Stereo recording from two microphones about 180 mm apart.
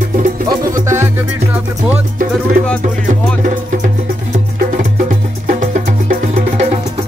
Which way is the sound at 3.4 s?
45° right (ahead or behind).